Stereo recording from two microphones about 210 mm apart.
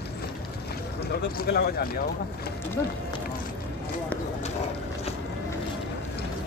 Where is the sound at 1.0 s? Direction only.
50° left (ahead or behind).